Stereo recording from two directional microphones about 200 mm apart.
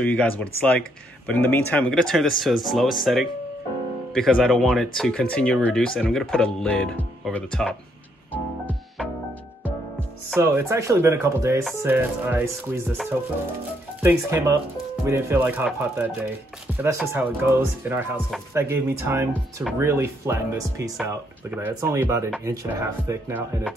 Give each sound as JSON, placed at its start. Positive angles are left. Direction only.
{"t": 0.0, "sound": "speech", "side_deg": 5}
{"t": 8.3, "sound": "music", "side_deg": 5}
{"t": 10.3, "sound": "speech", "side_deg": -10}
{"t": 12.9, "sound": "speech", "side_deg": 0}
{"t": 14.0, "sound": "speech", "side_deg": -15}